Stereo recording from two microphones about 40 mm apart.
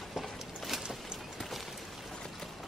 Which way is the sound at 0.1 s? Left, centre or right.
Centre.